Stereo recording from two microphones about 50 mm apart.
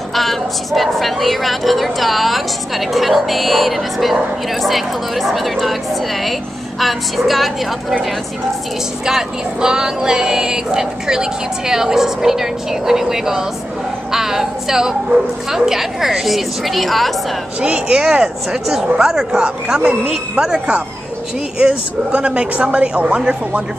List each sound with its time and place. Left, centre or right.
0.1 s a woman's voice: centre
6.8 s a woman's voice: centre
9.0 s a woman's voice: centre
17.6 s speech: centre
20.5 s speech: right